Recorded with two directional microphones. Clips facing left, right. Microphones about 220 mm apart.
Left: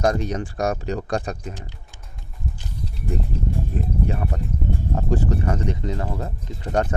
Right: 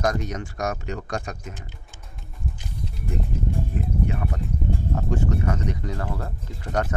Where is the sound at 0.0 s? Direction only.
30° left (ahead or behind).